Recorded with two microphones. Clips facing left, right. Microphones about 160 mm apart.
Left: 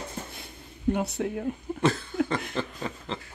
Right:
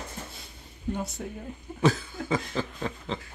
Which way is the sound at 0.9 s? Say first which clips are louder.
Left 6 dB; 65° left (ahead or behind).